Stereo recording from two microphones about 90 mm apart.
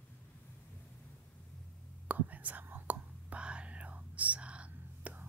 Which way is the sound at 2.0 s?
15° right (ahead or behind).